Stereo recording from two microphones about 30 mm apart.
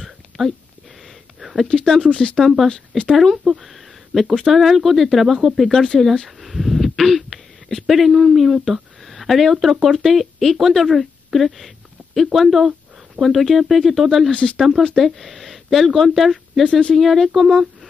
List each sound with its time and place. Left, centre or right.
0.4 s speech: centre
1.7 s speech: centre
2.4 s speech: centre
3.4 s a sound: centre
4.5 s speech: centre
6.2 s a sound: centre
7.8 s speech: centre